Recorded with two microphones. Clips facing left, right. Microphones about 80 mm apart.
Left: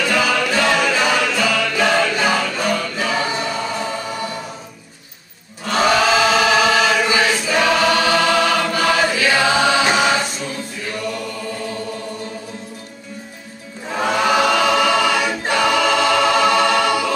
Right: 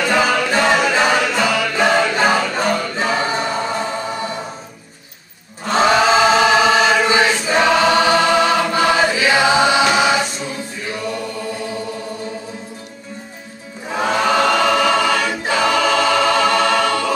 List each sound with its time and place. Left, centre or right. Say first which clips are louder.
0.0 s a capella: right 2 dB; right
0.9 s choir: right 2 dB; right
1.5 s music: right 1 dB; centre
1.9 s music: right 3 dB; right
5.7 s choir: right 2 dB; right
13.8 s music: right 1 dB; centre
14.2 s choir: even; centre